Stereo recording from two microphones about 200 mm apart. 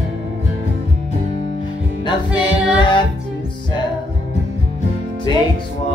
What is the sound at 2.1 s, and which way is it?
Music, 25° left (ahead or behind).